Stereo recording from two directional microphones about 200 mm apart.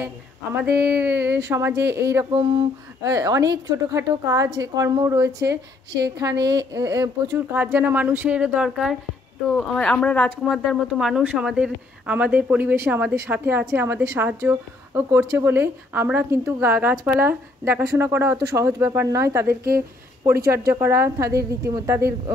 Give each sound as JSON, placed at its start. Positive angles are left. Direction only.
{"t": 0.0, "sound": "speech", "side_deg": -10}
{"t": 19.4, "sound": "speech", "side_deg": -50}
{"t": 20.2, "sound": "speech", "side_deg": -15}